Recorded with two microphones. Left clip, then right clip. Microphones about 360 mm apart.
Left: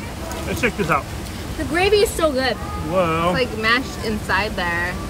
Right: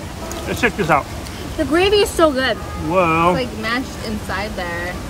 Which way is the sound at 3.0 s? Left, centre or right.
Right.